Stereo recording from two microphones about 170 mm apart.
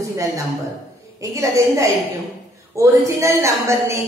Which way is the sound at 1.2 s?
20° right (ahead or behind).